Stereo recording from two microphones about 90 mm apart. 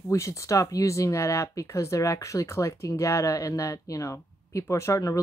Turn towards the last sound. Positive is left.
turn(degrees=35)  # may be behind; listen again after turning